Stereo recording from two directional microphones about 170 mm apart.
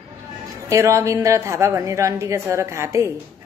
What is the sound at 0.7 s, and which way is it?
A woman's voice, 15° right (ahead or behind).